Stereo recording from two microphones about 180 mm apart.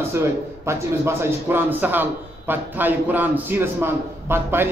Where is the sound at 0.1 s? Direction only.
15° right (ahead or behind).